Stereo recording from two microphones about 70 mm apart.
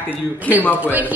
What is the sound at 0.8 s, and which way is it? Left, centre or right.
Speech, right.